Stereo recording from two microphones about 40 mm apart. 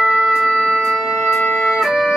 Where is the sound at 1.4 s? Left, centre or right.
Left.